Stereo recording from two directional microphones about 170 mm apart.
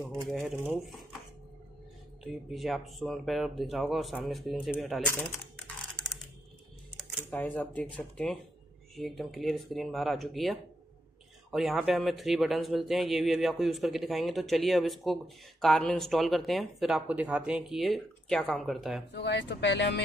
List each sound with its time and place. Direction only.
0.0 s speech: centre (ahead or behind)
2.5 s speech: centre (ahead or behind)
6.0 s typing: 5° left (ahead or behind)
7.0 s speech: 5° left (ahead or behind)
19.1 s speech: 80° left